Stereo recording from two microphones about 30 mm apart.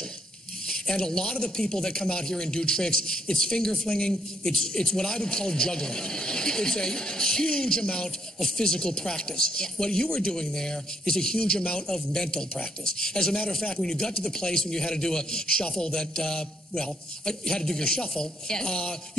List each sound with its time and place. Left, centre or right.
0.7 s a man's voice: left
4.1 s a man's voice: centre
15.4 s a man's voice: left